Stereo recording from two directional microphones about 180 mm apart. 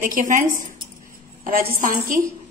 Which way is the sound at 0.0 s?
45° right (ahead or behind).